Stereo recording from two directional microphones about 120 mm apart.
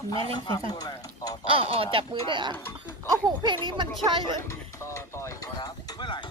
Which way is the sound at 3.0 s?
30° right (ahead or behind).